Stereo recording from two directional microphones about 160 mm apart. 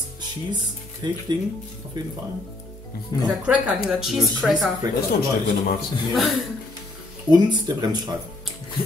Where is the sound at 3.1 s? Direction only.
20° left (ahead or behind).